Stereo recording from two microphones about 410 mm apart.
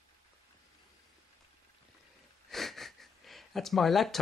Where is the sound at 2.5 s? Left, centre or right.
Centre.